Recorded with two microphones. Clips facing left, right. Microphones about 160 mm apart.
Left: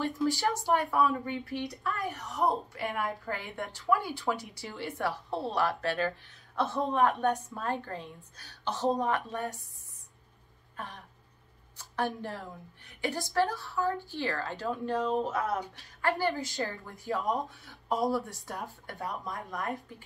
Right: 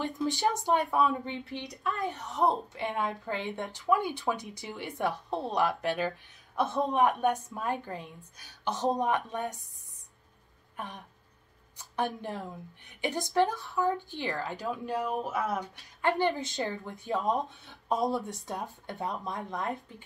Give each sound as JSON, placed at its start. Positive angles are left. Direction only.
{"t": 0.0, "sound": "speech", "side_deg": -20}
{"t": 10.8, "sound": "a woman's voice", "side_deg": -20}
{"t": 15.3, "sound": "speech", "side_deg": 0}
{"t": 16.0, "sound": "speech", "side_deg": -20}